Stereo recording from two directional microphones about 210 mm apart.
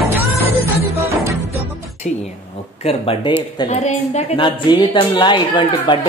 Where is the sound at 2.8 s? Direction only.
25° left (ahead or behind).